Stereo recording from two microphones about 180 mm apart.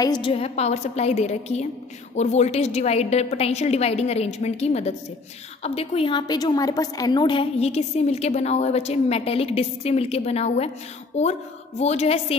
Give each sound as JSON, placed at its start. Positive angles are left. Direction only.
{"t": 0.0, "sound": "a woman's voice", "side_deg": 25}